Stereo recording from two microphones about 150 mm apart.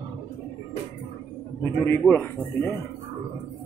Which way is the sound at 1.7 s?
15° left (ahead or behind).